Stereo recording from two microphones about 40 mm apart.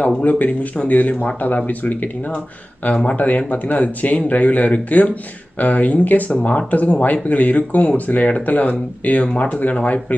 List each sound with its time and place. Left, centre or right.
0.2 s speech: left